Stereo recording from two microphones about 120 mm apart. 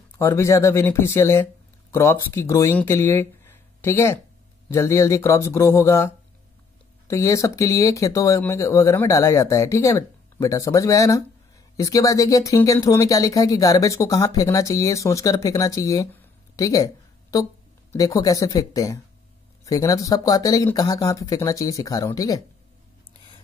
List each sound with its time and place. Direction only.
0.2 s speech: 20° left (ahead or behind)
16.5 s a sound: 30° left (ahead or behind)
17.9 s speech: 30° left (ahead or behind)